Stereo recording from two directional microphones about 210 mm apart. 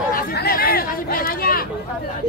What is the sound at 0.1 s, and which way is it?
Chatter, 45° left (ahead or behind).